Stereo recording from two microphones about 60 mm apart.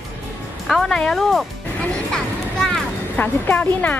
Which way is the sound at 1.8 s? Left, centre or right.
Centre.